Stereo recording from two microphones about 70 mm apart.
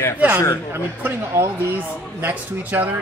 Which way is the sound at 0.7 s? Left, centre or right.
Right.